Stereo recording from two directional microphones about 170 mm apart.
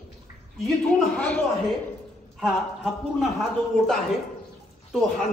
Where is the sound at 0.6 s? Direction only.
5° left (ahead or behind).